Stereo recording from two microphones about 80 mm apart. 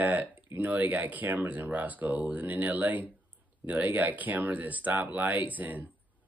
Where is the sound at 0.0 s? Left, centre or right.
Right.